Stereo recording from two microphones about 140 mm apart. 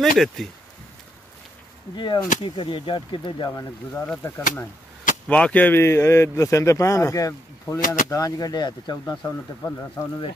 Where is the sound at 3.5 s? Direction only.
20° left (ahead or behind).